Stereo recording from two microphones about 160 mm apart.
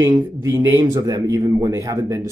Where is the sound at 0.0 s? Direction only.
15° right (ahead or behind).